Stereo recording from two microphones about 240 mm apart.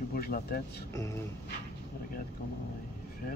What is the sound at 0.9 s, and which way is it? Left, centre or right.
Speech, centre.